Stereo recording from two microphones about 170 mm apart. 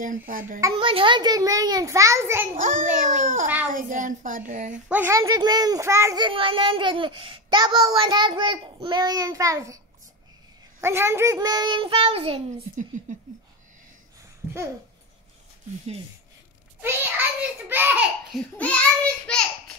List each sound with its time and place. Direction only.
0.3 s a child's voice: 55° right (ahead or behind)
0.7 s a child's voice: 30° right (ahead or behind); by 2.4 s 15° right (ahead or behind)
2.5 s a woman's voice: 55° right (ahead or behind)
4.8 s a child's voice: 10° right (ahead or behind)
6.2 s a child's voice: 30° right (ahead or behind)
10.8 s a child's voice: 15° right (ahead or behind); by 12.8 s 35° right (ahead or behind)
16.8 s a child's voice: 10° right (ahead or behind)
19.3 s a child's voice: 5° left (ahead or behind)